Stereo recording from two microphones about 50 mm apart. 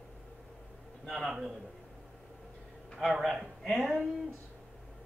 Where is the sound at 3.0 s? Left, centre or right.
Centre.